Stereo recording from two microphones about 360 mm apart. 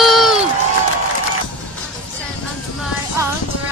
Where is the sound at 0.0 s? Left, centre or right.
Centre.